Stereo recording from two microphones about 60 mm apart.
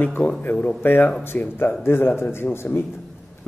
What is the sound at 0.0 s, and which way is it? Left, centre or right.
A man's voice, left.